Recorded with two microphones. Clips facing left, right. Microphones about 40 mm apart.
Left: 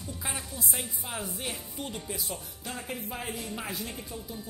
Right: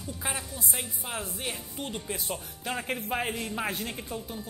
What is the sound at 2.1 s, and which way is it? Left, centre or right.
A woman's voice, right.